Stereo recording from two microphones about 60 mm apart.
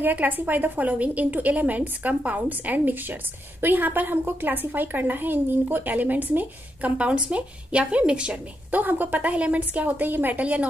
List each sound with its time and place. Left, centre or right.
0.0 s a woman's voice: right
8.7 s a woman's voice: right
10.4 s a woman's voice: right